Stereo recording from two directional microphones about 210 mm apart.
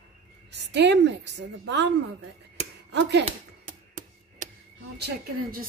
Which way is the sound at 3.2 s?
35° right (ahead or behind).